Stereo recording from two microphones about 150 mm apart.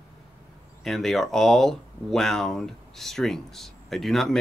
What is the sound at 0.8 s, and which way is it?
Speech, centre (ahead or behind).